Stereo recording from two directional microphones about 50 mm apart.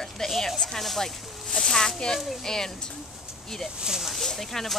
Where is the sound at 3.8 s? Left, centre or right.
Centre.